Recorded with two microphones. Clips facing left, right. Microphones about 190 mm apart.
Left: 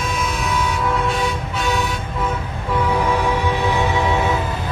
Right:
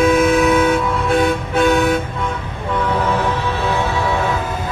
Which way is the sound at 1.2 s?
55° right (ahead or behind).